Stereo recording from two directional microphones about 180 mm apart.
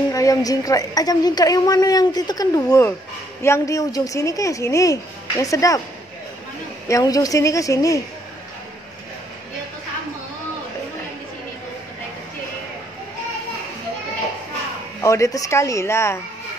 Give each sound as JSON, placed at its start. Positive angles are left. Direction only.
{"t": 0.1, "sound": "a woman's voice", "side_deg": 20}
{"t": 6.9, "sound": "a woman's voice", "side_deg": 20}
{"t": 15.0, "sound": "a woman's voice", "side_deg": 15}